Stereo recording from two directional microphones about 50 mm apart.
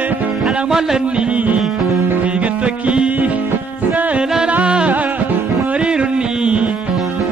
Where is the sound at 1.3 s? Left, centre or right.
Right.